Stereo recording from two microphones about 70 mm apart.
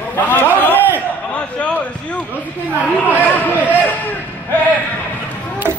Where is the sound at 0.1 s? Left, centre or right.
Left.